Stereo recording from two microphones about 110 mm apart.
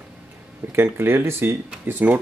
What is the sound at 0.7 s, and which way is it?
Speech, 20° right (ahead or behind).